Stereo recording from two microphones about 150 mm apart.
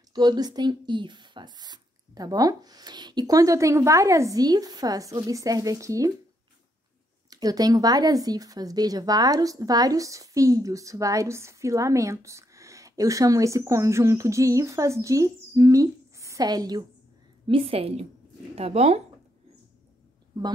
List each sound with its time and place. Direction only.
0.1 s speech: 30° right (ahead or behind)
7.2 s speech: 25° right (ahead or behind)
17.5 s a woman's voice: 40° right (ahead or behind)